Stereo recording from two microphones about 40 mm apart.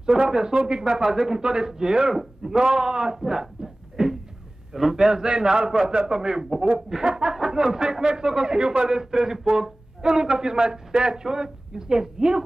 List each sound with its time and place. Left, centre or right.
0.0 s speech: centre
3.9 s a sound: centre
4.9 s speech: centre